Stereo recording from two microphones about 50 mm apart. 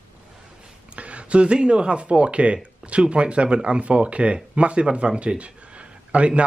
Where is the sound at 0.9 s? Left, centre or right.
Right.